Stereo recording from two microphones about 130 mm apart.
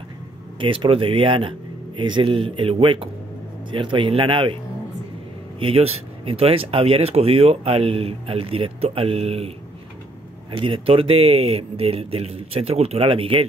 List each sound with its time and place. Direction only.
0.6 s speech: 40° right (ahead or behind)
5.6 s speech: 45° right (ahead or behind)
10.5 s speech: 45° right (ahead or behind)